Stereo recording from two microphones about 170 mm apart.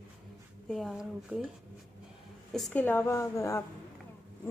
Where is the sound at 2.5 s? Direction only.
5° left (ahead or behind).